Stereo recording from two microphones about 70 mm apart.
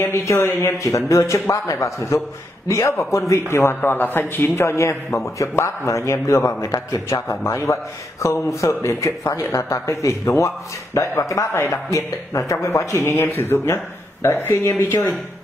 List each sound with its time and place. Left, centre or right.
0.0 s a man's voice: left
7.2 s a man's voice: left
13.0 s speech: left